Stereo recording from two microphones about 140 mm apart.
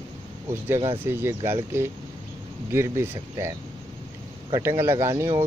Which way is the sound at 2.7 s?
20° right (ahead or behind).